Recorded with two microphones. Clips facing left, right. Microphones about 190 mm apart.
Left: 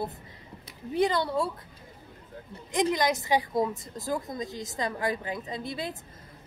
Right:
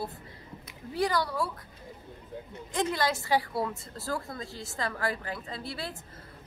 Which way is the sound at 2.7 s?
15° left (ahead or behind).